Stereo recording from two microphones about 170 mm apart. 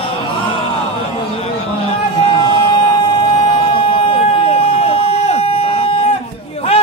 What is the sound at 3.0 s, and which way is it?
Emergency vehicle, 30° left (ahead or behind).